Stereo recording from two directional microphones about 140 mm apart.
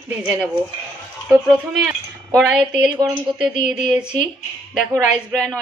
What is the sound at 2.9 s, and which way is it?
Speech, 35° right (ahead or behind).